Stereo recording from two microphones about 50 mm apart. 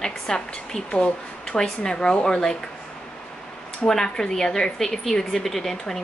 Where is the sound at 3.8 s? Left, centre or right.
Centre.